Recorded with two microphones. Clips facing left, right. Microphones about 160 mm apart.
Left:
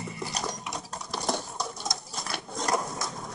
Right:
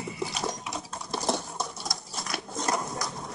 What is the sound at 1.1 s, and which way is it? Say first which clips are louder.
Patter: right 2 dB; centre (ahead or behind).